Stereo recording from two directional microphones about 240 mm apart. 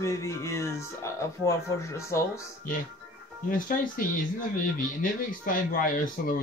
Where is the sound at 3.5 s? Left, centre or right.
Left.